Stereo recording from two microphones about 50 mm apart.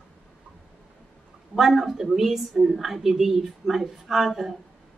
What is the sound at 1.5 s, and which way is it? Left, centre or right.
A woman's voice, centre.